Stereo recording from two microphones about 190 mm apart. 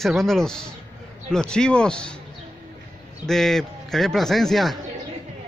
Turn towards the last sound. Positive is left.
turn(degrees=0)  # may be behind; listen again after turning